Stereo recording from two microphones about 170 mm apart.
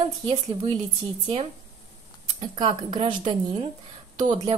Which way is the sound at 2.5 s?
30° right (ahead or behind).